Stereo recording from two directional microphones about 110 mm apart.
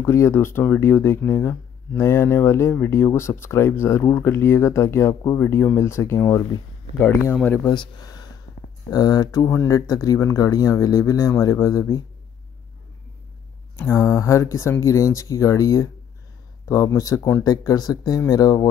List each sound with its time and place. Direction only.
0.0 s speech: 25° left (ahead or behind)
7.6 s speech: 40° left (ahead or behind)
13.7 s speech: 25° left (ahead or behind)